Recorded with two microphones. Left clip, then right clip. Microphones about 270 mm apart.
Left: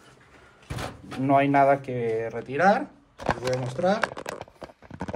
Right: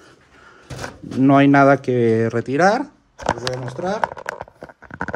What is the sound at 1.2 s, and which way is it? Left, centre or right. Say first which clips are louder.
Speech: right 7 dB; right.